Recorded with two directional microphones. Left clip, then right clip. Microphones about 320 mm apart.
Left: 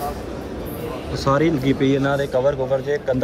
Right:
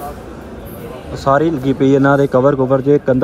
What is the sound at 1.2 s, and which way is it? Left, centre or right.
Speech, centre.